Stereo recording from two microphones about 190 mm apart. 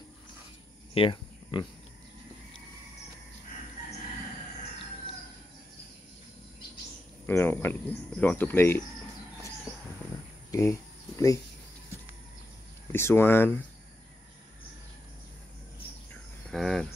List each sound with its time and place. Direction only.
0.9 s cricket: 25° left (ahead or behind)
7.2 s speech: 10° left (ahead or behind)
10.5 s speech: 15° left (ahead or behind)
12.9 s speech: 10° left (ahead or behind)
16.4 s cricket: centre (ahead or behind)